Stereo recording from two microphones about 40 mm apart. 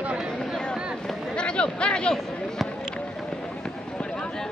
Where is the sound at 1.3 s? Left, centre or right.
Left.